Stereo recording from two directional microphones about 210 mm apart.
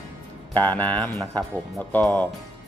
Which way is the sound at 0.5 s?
10° left (ahead or behind).